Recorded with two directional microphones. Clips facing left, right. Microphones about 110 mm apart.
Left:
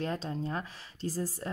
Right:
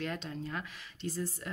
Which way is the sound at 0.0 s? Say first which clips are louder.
Left 4 dB; 35° left (ahead or behind).